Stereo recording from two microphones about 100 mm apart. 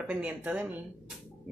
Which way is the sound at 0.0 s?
10° right (ahead or behind).